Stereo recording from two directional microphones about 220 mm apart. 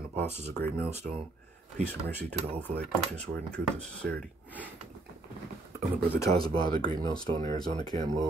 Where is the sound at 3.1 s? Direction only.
5° left (ahead or behind).